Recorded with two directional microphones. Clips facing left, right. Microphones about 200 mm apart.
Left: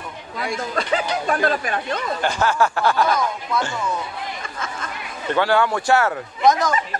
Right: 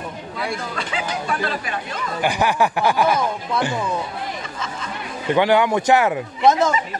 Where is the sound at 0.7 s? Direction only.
45° left (ahead or behind).